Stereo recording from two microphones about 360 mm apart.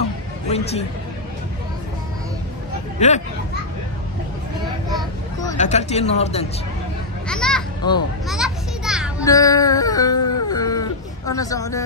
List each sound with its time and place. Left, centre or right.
0.5 s speech: centre
3.0 s speech: centre
4.9 s speech: centre
7.2 s a child's voice: centre
8.3 s children playing: centre
9.2 s a sound: centre